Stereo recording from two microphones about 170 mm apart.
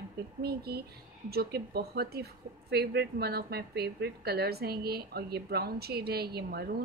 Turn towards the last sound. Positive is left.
turn(degrees=-65)  # may be behind; listen again after turning